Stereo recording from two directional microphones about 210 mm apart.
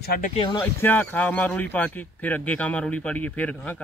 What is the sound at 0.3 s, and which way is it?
Speech, 25° left (ahead or behind).